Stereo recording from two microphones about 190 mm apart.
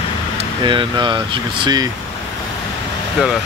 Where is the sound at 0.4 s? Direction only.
25° right (ahead or behind).